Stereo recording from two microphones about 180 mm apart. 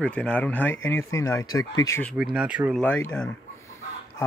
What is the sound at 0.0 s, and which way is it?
Speech, 5° left (ahead or behind).